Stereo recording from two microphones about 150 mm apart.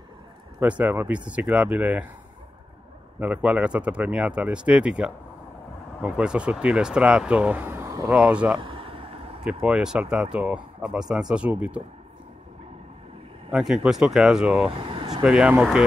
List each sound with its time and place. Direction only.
0.6 s speech: 10° right (ahead or behind)
3.2 s speech: 10° right (ahead or behind)
8.1 s speech: 5° right (ahead or behind)
8.5 s a sound: 35° right (ahead or behind)
9.4 s speech: 5° right (ahead or behind)
13.5 s speech: 5° right (ahead or behind)
14.8 s speech: 35° right (ahead or behind)
15.2 s speech: 5° right (ahead or behind)